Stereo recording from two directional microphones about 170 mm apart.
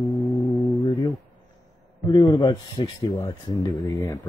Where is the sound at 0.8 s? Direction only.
20° left (ahead or behind).